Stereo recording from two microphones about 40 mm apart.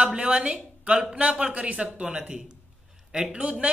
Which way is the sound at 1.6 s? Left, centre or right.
Right.